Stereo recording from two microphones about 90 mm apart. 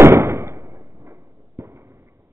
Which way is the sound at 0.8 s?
50° right (ahead or behind).